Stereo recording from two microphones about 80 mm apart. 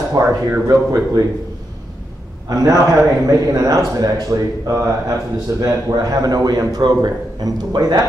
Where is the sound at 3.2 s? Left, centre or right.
Right.